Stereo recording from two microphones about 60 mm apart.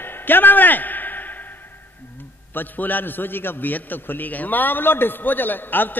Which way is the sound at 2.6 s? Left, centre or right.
Left.